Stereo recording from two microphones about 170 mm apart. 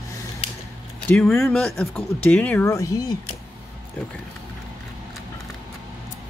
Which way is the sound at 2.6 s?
20° left (ahead or behind).